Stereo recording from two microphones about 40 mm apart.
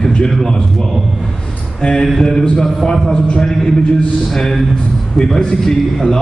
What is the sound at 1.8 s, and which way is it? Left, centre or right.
Speech, centre.